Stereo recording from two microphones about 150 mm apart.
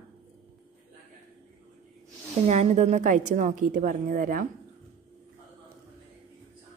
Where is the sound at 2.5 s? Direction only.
45° right (ahead or behind); by 4.4 s 65° right (ahead or behind).